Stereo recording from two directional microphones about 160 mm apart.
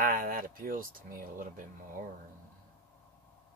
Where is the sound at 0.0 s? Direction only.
65° right (ahead or behind).